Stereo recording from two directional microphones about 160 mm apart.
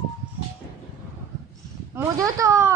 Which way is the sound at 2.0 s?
20° right (ahead or behind).